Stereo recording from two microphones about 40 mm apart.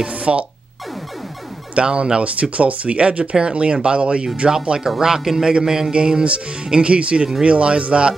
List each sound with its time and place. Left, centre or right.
0.0 s speech: right
1.8 s speech: right
2.5 s speech: right